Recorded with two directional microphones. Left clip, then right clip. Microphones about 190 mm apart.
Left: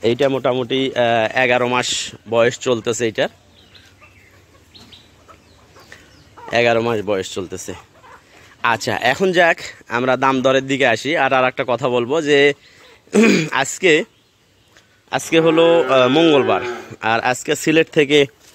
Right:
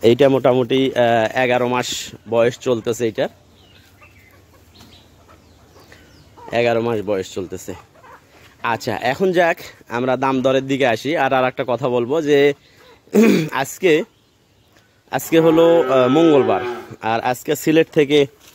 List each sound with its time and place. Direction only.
0.0 s speech: 30° right (ahead or behind); by 3.3 s centre (ahead or behind)
6.4 s speech: centre (ahead or behind)
15.0 s a man's voice: 15° right (ahead or behind)
16.7 s speech: centre (ahead or behind)